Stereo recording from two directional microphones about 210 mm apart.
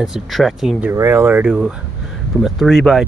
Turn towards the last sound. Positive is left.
turn(degrees=0)  # may be behind; listen again after turning